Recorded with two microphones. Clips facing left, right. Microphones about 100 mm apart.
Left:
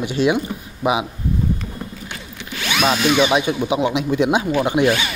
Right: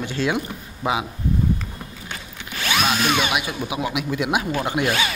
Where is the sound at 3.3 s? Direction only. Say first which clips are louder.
Left 7 dB; 25° left (ahead or behind).